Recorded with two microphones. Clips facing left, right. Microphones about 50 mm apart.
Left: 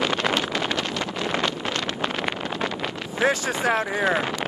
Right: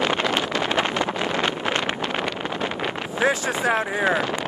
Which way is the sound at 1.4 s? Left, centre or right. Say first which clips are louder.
Right 2 dB; right.